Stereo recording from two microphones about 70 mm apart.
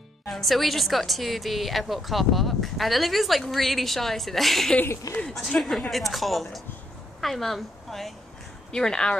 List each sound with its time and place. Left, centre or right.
0.3 s a woman's voice: centre
5.1 s speech: left
5.6 s a woman's voice: centre